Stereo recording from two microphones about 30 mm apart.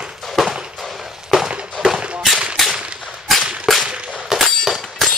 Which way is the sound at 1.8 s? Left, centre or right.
Right.